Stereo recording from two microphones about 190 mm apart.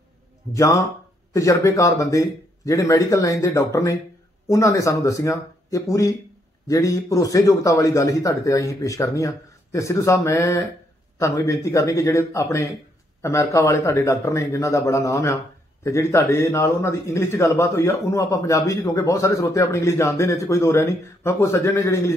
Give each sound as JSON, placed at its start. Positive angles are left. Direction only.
{"t": 0.6, "sound": "a man's voice", "side_deg": 15}